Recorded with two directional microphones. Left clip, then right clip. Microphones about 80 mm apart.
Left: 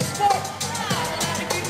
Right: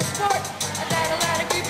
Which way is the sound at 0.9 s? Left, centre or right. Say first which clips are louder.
Right 5 dB; right.